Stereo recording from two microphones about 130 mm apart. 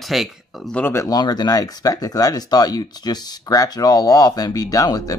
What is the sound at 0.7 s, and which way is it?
Speech, 20° left (ahead or behind).